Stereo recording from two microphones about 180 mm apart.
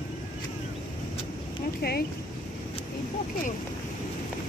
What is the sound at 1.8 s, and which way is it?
Speech, 65° left (ahead or behind).